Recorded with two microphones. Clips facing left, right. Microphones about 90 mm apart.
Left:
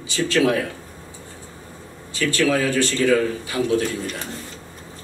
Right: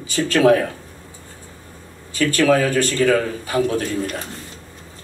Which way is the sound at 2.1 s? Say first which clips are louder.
Right 4 dB; 45° right (ahead or behind).